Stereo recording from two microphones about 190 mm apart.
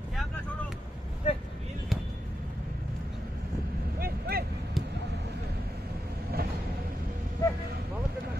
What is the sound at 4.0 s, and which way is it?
Vehicle, 55° right (ahead or behind).